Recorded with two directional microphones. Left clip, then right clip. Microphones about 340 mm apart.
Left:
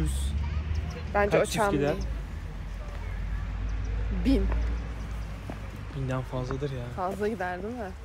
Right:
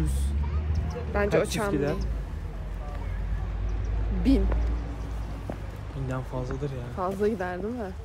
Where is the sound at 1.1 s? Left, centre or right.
Centre.